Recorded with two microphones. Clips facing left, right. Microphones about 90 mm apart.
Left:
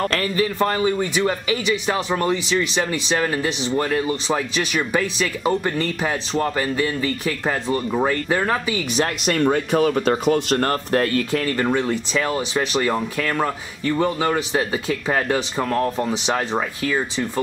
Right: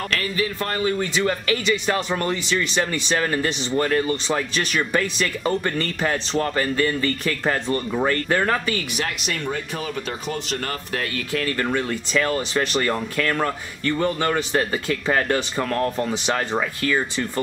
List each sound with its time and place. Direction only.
0.1 s a man's voice: 40° left (ahead or behind)
0.6 s a man's voice: 20° left (ahead or behind)
0.9 s speech: 10° left (ahead or behind)
9.2 s speech: 50° left (ahead or behind)
11.5 s speech: 20° left (ahead or behind)